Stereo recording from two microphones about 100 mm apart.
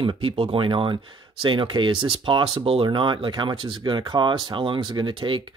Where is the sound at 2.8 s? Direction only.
50° right (ahead or behind).